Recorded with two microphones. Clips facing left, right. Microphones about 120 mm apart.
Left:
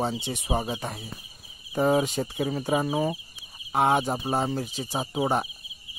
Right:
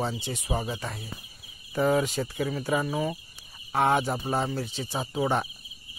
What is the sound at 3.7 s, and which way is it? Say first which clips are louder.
Speech: left 1 dB; 15° left (ahead or behind).